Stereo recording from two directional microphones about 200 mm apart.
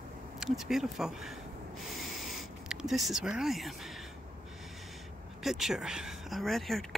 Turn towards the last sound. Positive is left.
turn(degrees=0)  # may be behind; listen again after turning